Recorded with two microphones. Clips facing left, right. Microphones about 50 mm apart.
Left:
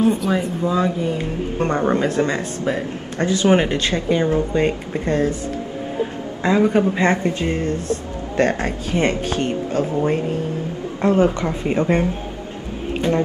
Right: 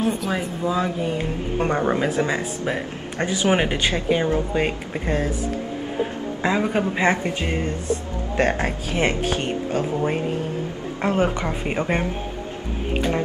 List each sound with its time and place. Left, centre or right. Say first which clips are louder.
0.0 s speech: left 5 dB; centre
2.6 s speech: left 3 dB; centre
6.4 s speech: left 5 dB; centre